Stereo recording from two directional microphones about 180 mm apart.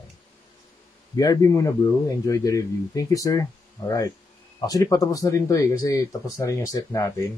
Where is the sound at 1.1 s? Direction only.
20° left (ahead or behind).